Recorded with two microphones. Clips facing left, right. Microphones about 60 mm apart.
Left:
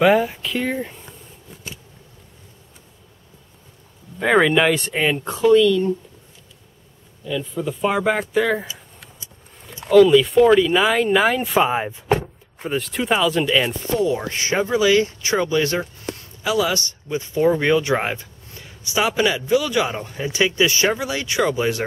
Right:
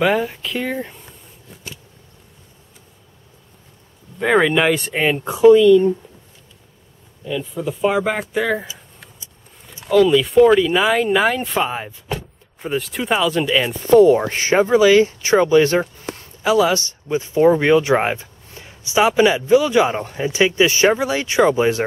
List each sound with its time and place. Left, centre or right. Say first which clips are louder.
0.0 s speech: left 2 dB; centre
4.2 s speech: even; centre
7.2 s speech: right 1 dB; centre
9.8 s speech: left 2 dB; centre
11.7 s speech: left 5 dB; centre
12.5 s speech: right 1 dB; centre
13.8 s speech: right 10 dB; right
14.1 s speech: right 6 dB; right